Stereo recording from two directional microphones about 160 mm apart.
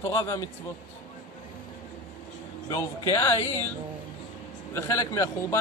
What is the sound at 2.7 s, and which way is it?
Speech, 20° left (ahead or behind).